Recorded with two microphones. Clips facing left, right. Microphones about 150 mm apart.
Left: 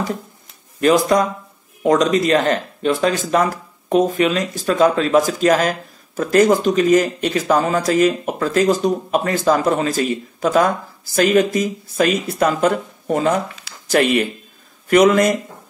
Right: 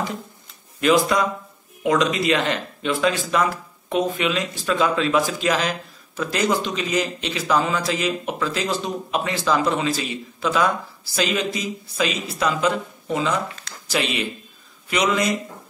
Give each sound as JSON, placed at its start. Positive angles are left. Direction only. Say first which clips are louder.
{"t": 0.7, "sound": "speech", "louder": "left 4 dB", "side_deg": 40}